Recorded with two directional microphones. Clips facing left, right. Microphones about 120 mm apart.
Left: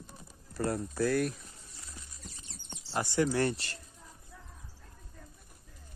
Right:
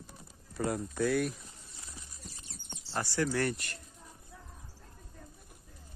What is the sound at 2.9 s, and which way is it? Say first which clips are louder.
Speech: left 3 dB; 20° left (ahead or behind).